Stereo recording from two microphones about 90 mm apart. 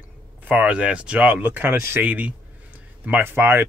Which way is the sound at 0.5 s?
15° right (ahead or behind).